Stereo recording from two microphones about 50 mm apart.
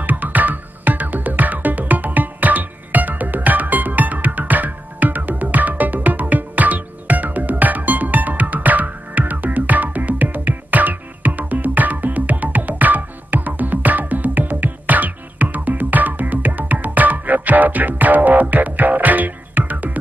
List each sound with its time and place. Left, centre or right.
0.0 s music: right